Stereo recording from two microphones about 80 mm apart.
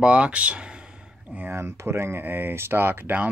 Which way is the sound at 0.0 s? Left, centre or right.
Centre.